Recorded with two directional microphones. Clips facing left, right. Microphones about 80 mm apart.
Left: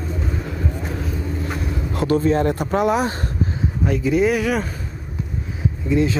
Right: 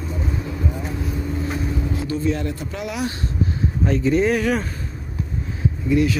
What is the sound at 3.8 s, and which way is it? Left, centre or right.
Speech, centre.